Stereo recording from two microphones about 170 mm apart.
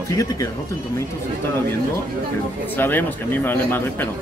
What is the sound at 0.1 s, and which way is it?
Speech, 20° left (ahead or behind).